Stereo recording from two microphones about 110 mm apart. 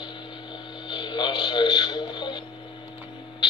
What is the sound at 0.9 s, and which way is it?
Music, 45° left (ahead or behind).